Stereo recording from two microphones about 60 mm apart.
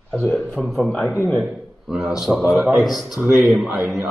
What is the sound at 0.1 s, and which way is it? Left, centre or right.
A man's voice, centre.